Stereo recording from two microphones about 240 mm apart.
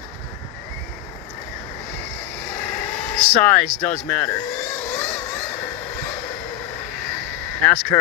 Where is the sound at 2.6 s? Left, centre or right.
Centre.